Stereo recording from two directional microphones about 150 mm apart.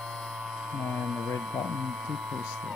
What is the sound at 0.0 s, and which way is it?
Mains hum, centre (ahead or behind).